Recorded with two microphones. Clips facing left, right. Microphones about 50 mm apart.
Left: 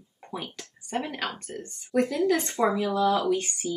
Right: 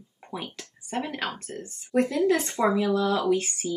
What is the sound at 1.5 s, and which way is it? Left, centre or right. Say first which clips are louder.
Speech: right 1 dB; centre.